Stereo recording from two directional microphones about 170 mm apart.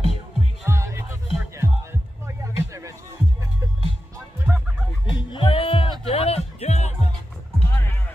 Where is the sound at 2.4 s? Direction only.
20° right (ahead or behind).